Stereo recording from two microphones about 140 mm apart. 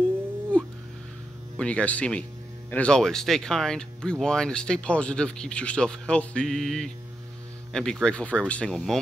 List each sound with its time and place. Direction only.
0.5 s music: 10° left (ahead or behind)
1.6 s speech: 10° left (ahead or behind)